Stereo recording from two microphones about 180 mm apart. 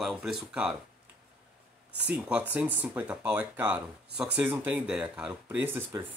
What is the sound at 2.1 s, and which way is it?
Speech, 10° right (ahead or behind).